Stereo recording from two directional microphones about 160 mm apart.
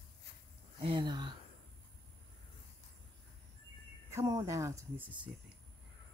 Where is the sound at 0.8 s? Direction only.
30° right (ahead or behind).